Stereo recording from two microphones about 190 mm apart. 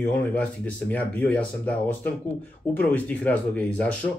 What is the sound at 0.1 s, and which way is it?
Speech, 10° left (ahead or behind).